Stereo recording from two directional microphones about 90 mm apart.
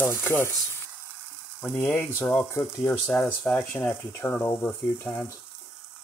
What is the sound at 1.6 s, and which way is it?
Speech, 25° left (ahead or behind).